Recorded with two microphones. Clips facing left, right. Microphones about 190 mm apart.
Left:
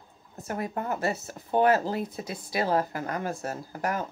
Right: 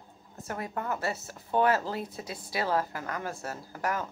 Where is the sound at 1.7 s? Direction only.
15° left (ahead or behind).